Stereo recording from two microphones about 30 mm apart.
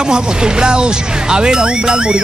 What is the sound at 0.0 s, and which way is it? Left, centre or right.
Speech, right.